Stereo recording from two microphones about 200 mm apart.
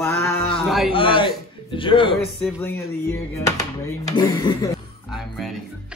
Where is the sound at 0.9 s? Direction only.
25° left (ahead or behind).